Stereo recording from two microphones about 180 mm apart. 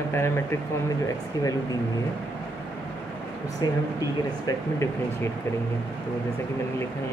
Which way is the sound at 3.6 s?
20° left (ahead or behind).